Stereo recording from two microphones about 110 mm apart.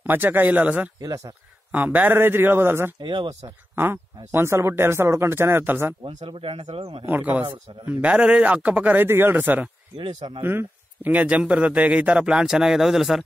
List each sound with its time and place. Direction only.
0.0 s a man's voice: 20° right (ahead or behind)
1.0 s speech: 30° right (ahead or behind)
1.7 s speech: 15° right (ahead or behind)
3.0 s speech: 50° right (ahead or behind)
3.7 s speech: 20° right (ahead or behind)
6.0 s speech: 50° right (ahead or behind)
7.1 s a man's voice: 15° right (ahead or behind)
9.9 s speech: 50° right (ahead or behind)
10.4 s a man's voice: 20° right (ahead or behind); by 13.2 s centre (ahead or behind)